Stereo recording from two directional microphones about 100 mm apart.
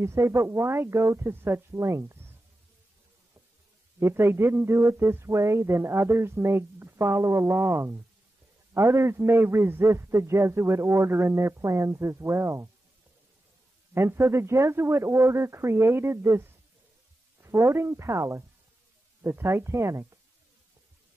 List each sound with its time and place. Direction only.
0.0 s a man's voice: 30° right (ahead or behind)
4.0 s a man's voice: 25° right (ahead or behind)
13.9 s a man's voice: 25° right (ahead or behind)